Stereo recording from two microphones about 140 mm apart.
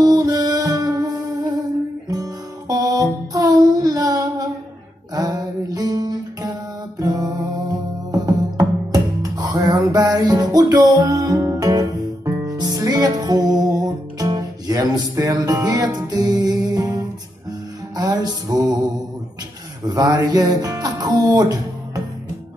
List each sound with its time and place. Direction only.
0.0 s music: 30° right (ahead or behind)
2.7 s music: 25° right (ahead or behind)